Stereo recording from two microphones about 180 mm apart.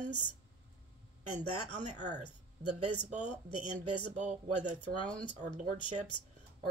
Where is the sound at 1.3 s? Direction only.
40° right (ahead or behind).